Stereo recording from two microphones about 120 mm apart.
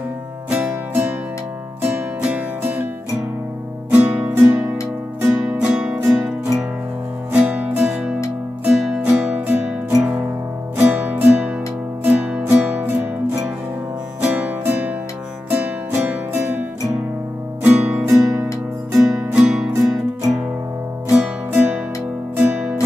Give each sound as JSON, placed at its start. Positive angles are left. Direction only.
{"t": 0.5, "sound": "music", "side_deg": -15}
{"t": 3.9, "sound": "music", "side_deg": -10}
{"t": 5.7, "sound": "music", "side_deg": -5}
{"t": 14.2, "sound": "music", "side_deg": -10}
{"t": 17.6, "sound": "music", "side_deg": -10}
{"t": 18.0, "sound": "music", "side_deg": -25}
{"t": 18.9, "sound": "music", "side_deg": -5}